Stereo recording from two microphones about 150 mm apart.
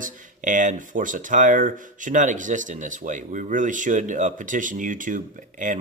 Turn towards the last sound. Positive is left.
turn(degrees=-60)  # may be behind; listen again after turning